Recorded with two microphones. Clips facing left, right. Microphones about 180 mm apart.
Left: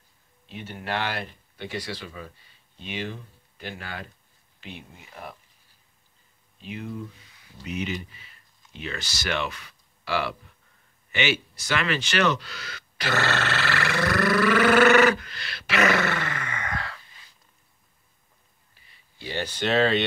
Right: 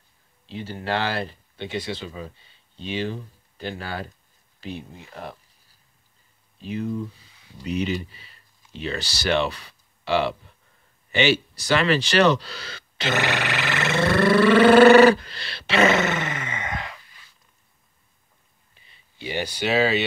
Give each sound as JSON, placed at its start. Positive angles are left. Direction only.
{"t": 0.5, "sound": "speech", "side_deg": -30}
{"t": 6.6, "sound": "speech", "side_deg": -35}
{"t": 18.8, "sound": "speech", "side_deg": -20}